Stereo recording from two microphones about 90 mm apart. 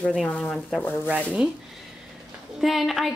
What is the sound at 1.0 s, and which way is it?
Speech, 15° right (ahead or behind).